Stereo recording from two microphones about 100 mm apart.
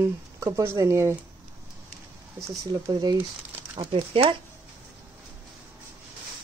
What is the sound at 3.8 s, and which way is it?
Speech, 55° right (ahead or behind).